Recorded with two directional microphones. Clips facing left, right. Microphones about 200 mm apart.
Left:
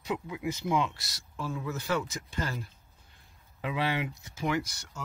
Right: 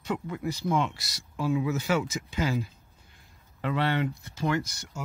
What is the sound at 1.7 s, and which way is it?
Speech, 90° right.